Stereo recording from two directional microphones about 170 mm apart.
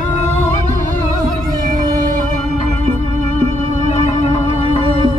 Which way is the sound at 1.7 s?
50° right (ahead or behind).